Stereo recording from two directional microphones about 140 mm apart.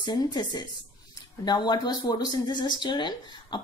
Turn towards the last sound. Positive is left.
turn(degrees=35)  # may be behind; listen again after turning